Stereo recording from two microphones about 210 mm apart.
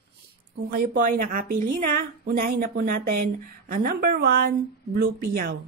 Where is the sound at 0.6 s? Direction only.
40° right (ahead or behind).